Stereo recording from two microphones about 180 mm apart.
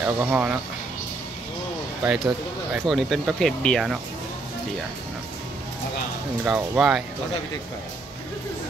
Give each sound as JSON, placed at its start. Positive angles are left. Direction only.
{"t": 0.0, "sound": "speech", "side_deg": -10}
{"t": 2.7, "sound": "speech", "side_deg": 0}
{"t": 6.4, "sound": "speech", "side_deg": -5}